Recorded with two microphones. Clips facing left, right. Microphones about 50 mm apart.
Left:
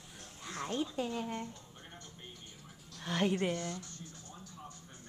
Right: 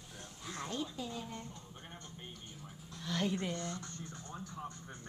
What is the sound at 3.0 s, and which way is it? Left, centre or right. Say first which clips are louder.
Speech: left 4 dB; left.